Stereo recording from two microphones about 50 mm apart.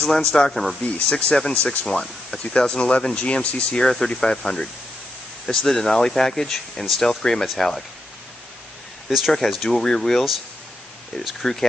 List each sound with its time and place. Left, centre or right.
0.0 s speech: centre
1.5 s speech: left
3.8 s speech: centre
9.1 s speech: centre
9.5 s speech: centre
9.8 s speech: centre
11.4 s speech: centre